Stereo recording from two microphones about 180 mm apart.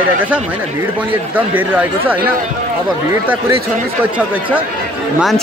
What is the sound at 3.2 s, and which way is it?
Speech, 10° right (ahead or behind).